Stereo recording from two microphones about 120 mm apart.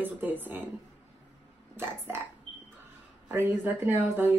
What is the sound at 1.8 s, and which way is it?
Speech, 20° right (ahead or behind).